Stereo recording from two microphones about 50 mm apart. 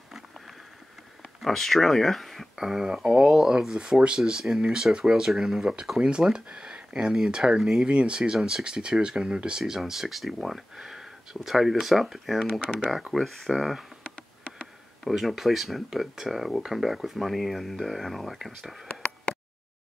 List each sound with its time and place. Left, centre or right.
1.4 s speech: centre
2.5 s speech: centre
12.5 s speech: right
12.9 s speech: centre
15.0 s speech: centre